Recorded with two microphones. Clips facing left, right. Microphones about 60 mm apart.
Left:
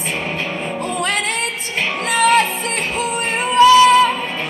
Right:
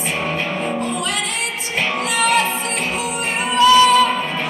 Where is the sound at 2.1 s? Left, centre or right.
Left.